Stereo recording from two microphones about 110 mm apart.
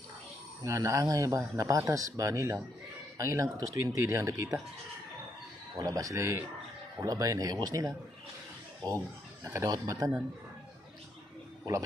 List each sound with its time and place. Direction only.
0.6 s speech: 30° right (ahead or behind)
5.8 s speech: 30° right (ahead or behind)